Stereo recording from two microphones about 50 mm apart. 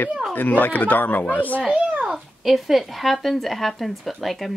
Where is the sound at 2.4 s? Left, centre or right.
Centre.